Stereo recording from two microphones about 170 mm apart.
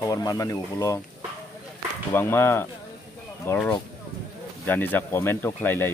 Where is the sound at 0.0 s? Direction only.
20° left (ahead or behind).